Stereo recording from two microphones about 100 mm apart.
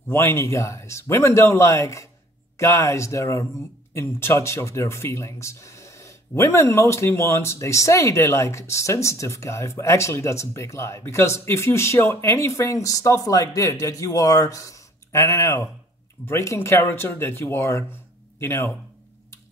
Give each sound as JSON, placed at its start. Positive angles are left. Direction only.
{"t": 0.1, "sound": "speech", "side_deg": 25}